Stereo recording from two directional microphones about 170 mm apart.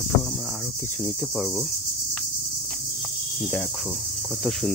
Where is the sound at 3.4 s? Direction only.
Centre (ahead or behind).